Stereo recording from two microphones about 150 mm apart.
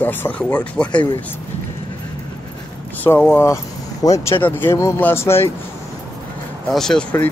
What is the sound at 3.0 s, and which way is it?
Speech, 15° left (ahead or behind).